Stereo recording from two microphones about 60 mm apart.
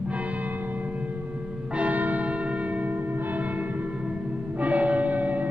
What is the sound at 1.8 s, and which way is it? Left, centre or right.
Church bell, right.